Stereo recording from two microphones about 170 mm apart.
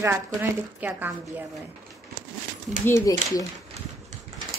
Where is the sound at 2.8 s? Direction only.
15° left (ahead or behind).